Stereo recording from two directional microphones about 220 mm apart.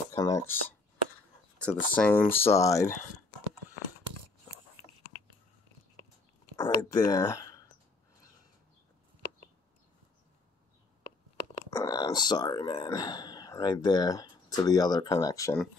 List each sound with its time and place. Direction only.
0.1 s speech: 15° left (ahead or behind)
6.5 s speech: 15° left (ahead or behind)
11.1 s speech: 15° left (ahead or behind)